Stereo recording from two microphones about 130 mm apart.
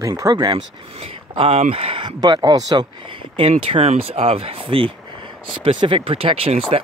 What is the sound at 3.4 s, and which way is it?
Speech, 55° right (ahead or behind).